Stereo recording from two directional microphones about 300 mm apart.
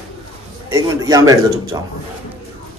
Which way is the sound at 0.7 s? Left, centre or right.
Centre.